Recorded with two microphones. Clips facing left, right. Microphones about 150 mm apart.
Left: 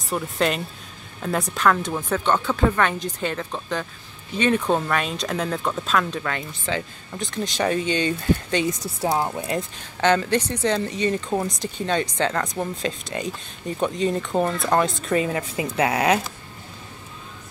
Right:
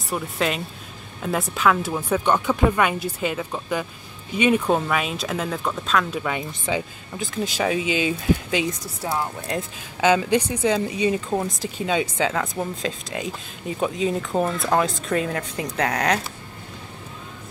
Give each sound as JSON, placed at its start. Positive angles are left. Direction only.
{"t": 0.1, "sound": "speech", "side_deg": 0}
{"t": 9.0, "sound": "speech", "side_deg": 25}
{"t": 9.5, "sound": "speech", "side_deg": -5}